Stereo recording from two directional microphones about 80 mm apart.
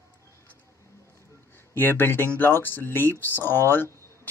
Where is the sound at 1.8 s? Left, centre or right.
Left.